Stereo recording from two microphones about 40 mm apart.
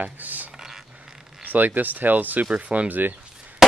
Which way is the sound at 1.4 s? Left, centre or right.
Right.